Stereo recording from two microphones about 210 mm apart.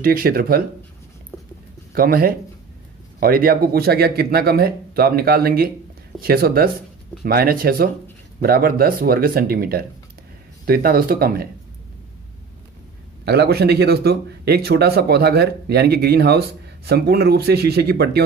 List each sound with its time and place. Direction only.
0.0 s a man's voice: 45° right (ahead or behind)
2.0 s a man's voice: 45° right (ahead or behind)
13.2 s a man's voice: 50° right (ahead or behind)